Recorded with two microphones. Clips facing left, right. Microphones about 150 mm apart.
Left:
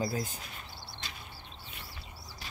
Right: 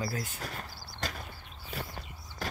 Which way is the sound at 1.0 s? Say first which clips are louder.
Right 11 dB; 40° right (ahead or behind).